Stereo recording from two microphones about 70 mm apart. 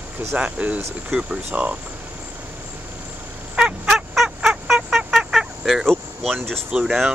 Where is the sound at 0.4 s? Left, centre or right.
Right.